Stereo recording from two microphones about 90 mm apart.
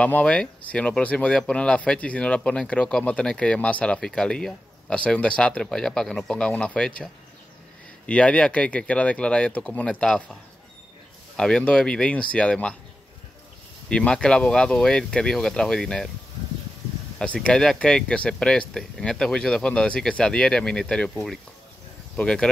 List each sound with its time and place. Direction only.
0.0 s speech: 15° left (ahead or behind)
8.1 s speech: 15° left (ahead or behind)
11.3 s speech: 10° left (ahead or behind)
13.8 s speech: 10° left (ahead or behind)
17.2 s speech: 10° left (ahead or behind)